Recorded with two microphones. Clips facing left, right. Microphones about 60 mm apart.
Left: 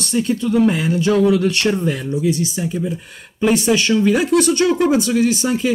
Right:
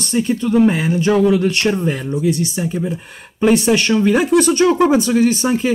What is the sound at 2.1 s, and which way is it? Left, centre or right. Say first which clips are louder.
Speech: right 1 dB; right.